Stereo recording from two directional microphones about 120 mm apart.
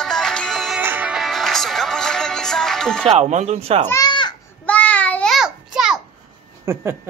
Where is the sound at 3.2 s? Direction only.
70° right (ahead or behind).